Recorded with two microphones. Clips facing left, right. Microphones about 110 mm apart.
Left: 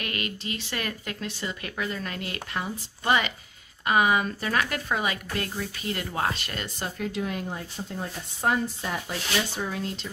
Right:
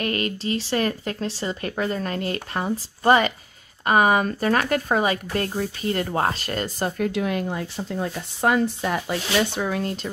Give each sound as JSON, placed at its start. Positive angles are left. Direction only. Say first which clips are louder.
{"t": 0.0, "sound": "speech", "louder": "right 8 dB", "side_deg": -35}
{"t": 7.0, "sound": "speech", "louder": "right 5 dB", "side_deg": -75}